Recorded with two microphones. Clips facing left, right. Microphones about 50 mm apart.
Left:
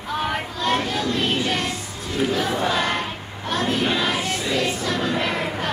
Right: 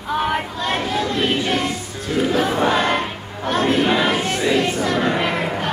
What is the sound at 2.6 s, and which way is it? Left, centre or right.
Choir, right.